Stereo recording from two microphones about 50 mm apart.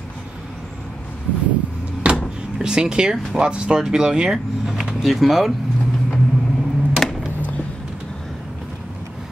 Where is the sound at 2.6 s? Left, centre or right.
Centre.